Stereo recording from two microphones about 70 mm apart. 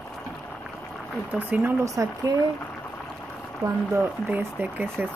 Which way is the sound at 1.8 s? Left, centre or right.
Right.